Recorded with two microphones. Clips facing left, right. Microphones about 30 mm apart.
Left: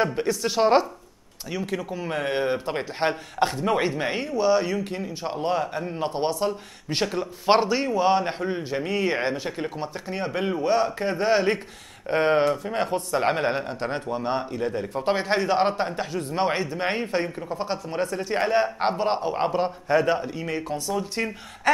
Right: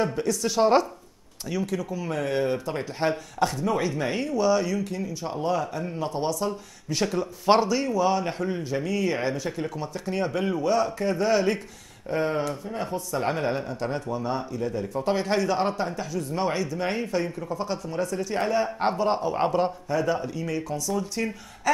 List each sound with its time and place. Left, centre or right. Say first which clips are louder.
0.0 s a man's voice: left 1 dB; left
1.8 s speech: left 1 dB; left
3.9 s speech: even; left
10.0 s a man's voice: right 1 dB; centre
12.1 s speech: left 6 dB; left
13.2 s speech: left 1 dB; left
19.3 s a man's voice: even; centre
19.9 s speech: left 8 dB; left
20.2 s speech: even; left